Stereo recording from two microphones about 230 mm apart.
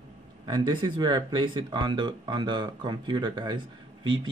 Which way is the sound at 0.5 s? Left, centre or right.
Centre.